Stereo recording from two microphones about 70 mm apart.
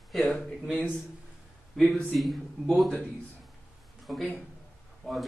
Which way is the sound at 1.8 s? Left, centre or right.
Centre.